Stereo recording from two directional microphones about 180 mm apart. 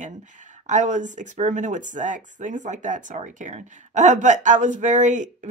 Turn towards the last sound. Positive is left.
turn(degrees=-45)  # may be behind; listen again after turning